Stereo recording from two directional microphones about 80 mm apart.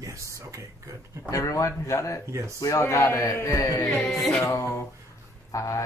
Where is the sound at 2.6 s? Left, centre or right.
Left.